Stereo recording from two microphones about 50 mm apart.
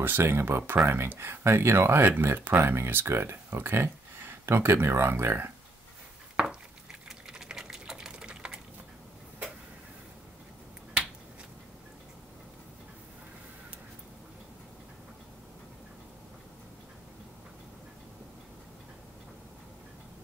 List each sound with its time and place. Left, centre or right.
0.0 s speech: right
2.6 s speech: right
6.4 s a sound: centre